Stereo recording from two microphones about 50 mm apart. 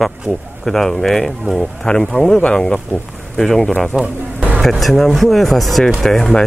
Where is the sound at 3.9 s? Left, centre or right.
Centre.